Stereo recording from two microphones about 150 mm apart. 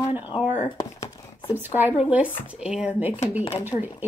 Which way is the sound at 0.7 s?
20° left (ahead or behind).